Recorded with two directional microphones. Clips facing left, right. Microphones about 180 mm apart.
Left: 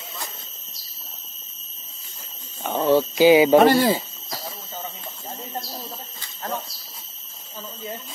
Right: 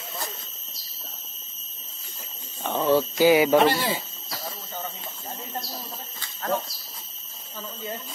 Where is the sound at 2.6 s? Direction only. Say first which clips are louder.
Left 3 dB; 15° left (ahead or behind).